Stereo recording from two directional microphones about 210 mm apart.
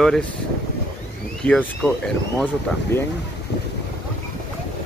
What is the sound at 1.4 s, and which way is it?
Speech, 5° left (ahead or behind).